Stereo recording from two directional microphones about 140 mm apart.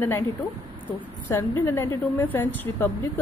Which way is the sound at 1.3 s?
25° left (ahead or behind).